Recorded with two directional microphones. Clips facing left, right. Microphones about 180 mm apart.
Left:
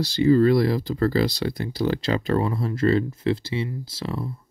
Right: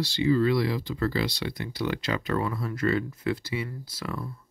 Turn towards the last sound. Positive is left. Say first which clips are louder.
# left 5 dB
turn(degrees=30)  # may be behind; listen again after turning